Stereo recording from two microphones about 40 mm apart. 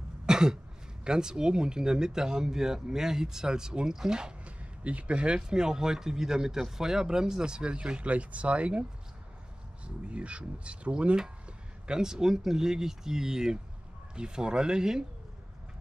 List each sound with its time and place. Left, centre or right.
0.3 s throat clearing: centre
1.0 s speech: centre
4.5 s speech: right
9.8 s speech: right
11.9 s speech: centre